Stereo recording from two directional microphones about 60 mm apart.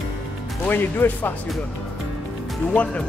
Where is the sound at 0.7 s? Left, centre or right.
Left.